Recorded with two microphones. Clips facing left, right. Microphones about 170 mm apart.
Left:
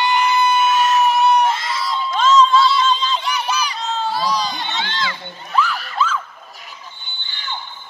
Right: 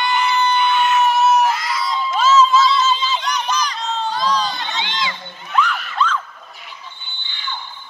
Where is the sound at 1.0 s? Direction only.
Centre (ahead or behind).